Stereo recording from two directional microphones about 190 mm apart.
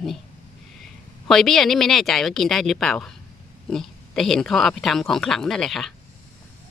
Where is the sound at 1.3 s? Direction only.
Centre (ahead or behind).